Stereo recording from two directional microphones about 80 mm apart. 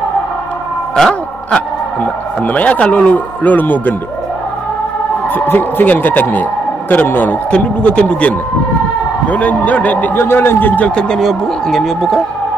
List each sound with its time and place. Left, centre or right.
0.9 s a sound: centre
2.4 s a man's voice: centre
5.3 s a man's voice: left
11.0 s speech: centre